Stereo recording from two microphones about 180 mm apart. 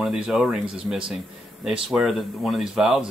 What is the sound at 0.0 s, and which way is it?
Speech, 5° right (ahead or behind).